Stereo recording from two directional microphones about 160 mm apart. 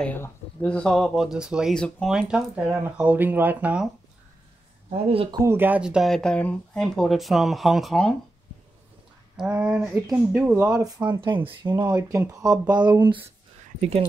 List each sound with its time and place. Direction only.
0.0 s speech: 10° left (ahead or behind); by 3.9 s 10° right (ahead or behind)
4.9 s speech: 35° right (ahead or behind)
5.4 s speech: 15° right (ahead or behind)
9.4 s speech: 5° right (ahead or behind); by 12.9 s 25° right (ahead or behind)
13.7 s speech: 40° right (ahead or behind)